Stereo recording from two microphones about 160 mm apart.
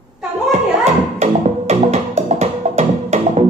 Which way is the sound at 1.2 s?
45° right (ahead or behind).